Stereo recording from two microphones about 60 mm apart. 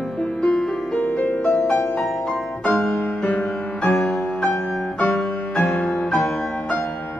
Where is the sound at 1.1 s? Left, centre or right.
Left.